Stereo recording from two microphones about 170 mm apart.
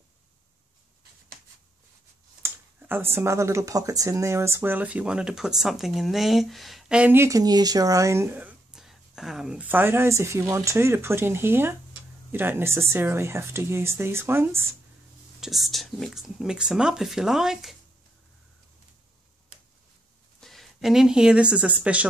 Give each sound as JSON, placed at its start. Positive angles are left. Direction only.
{"t": 2.4, "sound": "speech", "side_deg": -10}
{"t": 15.4, "sound": "speech", "side_deg": 0}
{"t": 20.3, "sound": "speech", "side_deg": 0}